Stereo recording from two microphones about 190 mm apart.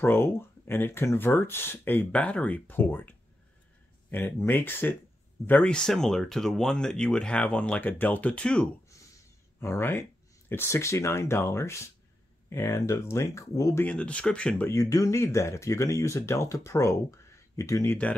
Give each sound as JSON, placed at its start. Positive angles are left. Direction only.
{"t": 0.0, "sound": "speech", "side_deg": 10}
{"t": 8.8, "sound": "a sound", "side_deg": 15}
{"t": 10.5, "sound": "speech", "side_deg": 15}
{"t": 13.8, "sound": "speech", "side_deg": 5}
{"t": 14.7, "sound": "speech", "side_deg": 15}